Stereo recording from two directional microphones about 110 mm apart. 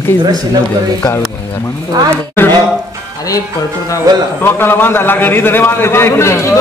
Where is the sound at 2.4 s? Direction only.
20° left (ahead or behind).